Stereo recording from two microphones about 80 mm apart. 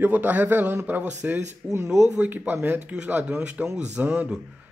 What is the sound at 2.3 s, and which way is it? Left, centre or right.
A man's voice, right.